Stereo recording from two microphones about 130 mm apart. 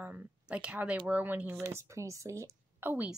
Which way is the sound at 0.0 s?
10° right (ahead or behind).